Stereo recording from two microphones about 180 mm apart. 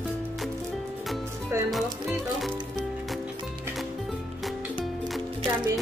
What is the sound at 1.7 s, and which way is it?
Music, centre (ahead or behind).